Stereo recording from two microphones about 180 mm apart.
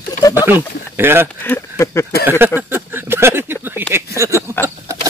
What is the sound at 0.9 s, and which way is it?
Speech, 15° right (ahead or behind).